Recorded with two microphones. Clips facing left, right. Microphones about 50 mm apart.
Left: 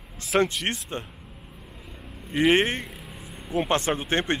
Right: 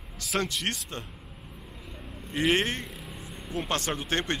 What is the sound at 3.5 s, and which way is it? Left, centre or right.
Speech, left.